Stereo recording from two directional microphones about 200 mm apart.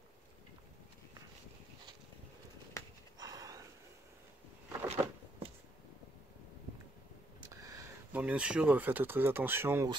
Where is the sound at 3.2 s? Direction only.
20° right (ahead or behind).